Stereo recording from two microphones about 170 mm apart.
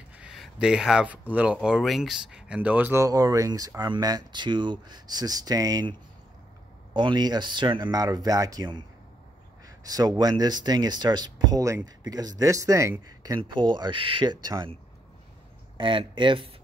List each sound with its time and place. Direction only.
0.2 s speech: 5° right (ahead or behind); by 5.9 s 20° right (ahead or behind)
7.0 s speech: 25° right (ahead or behind)
9.8 s speech: 20° right (ahead or behind)
13.4 s speech: 30° right (ahead or behind)
15.8 s speech: 30° right (ahead or behind)